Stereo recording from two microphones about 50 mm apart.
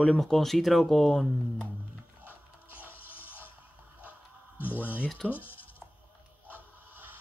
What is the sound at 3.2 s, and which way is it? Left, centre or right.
Music, left.